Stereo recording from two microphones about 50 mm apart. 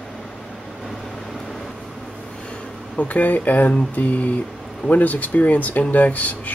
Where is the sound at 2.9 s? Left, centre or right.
Left.